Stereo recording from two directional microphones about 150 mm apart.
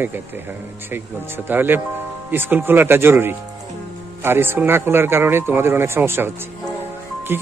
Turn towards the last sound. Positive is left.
turn(degrees=-15)  # may be behind; listen again after turning